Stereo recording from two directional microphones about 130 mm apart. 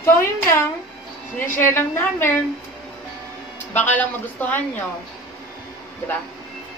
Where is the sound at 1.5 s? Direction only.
20° left (ahead or behind).